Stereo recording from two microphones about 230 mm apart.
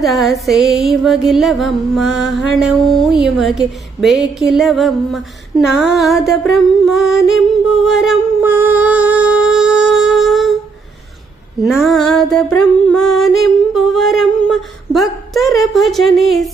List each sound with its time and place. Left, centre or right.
0.0 s music: centre
7.8 s humming: centre
11.6 s music: centre